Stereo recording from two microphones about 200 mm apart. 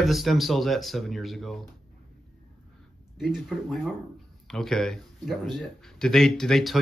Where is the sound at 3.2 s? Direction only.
Centre (ahead or behind).